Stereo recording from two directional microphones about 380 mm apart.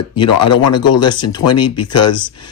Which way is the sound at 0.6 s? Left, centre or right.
Left.